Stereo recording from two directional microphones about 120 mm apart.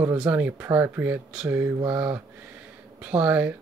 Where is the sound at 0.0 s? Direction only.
20° right (ahead or behind).